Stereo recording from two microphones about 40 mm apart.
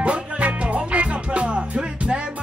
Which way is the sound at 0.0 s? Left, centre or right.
Right.